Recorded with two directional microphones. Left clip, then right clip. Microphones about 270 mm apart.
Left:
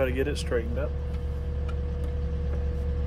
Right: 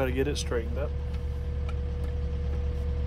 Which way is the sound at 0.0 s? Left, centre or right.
Right.